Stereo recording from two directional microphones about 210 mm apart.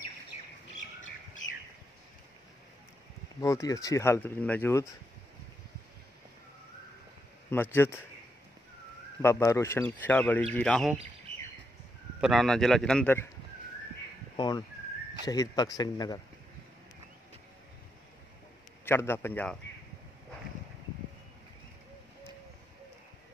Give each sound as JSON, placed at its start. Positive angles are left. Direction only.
{"t": 3.3, "sound": "speech", "side_deg": 15}
{"t": 7.4, "sound": "speech", "side_deg": 10}
{"t": 9.2, "sound": "a man's voice", "side_deg": 15}
{"t": 12.2, "sound": "a man's voice", "side_deg": 0}
{"t": 14.3, "sound": "speech", "side_deg": 20}
{"t": 18.9, "sound": "speech", "side_deg": 10}